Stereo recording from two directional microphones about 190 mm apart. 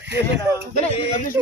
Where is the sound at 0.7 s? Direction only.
35° left (ahead or behind).